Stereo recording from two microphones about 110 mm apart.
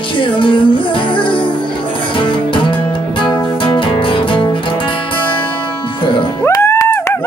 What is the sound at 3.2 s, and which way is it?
Music, 50° left (ahead or behind).